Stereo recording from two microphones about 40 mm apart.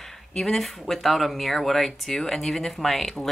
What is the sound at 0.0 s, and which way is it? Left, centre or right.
Speech, centre.